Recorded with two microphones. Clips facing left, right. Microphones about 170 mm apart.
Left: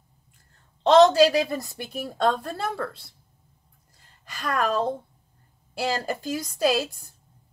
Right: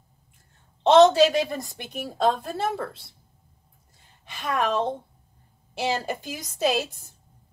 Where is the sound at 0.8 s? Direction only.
Centre (ahead or behind).